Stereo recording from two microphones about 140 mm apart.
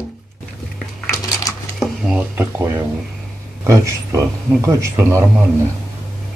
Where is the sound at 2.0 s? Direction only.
5° right (ahead or behind).